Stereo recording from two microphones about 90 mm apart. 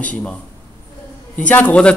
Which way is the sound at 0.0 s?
15° left (ahead or behind).